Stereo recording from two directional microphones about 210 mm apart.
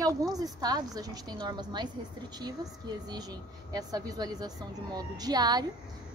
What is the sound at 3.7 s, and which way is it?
A woman's voice, 20° right (ahead or behind).